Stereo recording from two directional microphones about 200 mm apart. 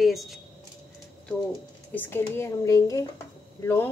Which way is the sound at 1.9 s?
10° left (ahead or behind).